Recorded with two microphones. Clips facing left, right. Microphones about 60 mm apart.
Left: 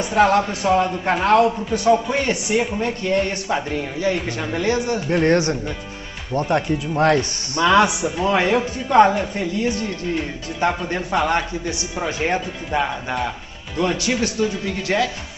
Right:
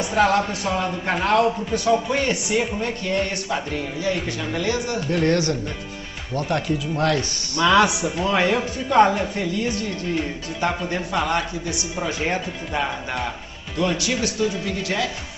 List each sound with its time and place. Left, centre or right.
0.0 s speech: left
12.7 s speech: centre
13.7 s speech: left